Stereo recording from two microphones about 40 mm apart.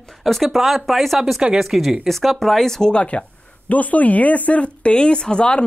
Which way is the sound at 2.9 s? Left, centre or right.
Left.